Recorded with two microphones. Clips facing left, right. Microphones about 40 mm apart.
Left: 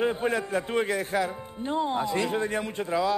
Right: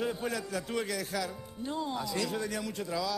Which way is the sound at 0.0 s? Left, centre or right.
Left.